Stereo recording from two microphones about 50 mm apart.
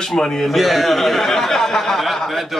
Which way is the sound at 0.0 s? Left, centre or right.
Centre.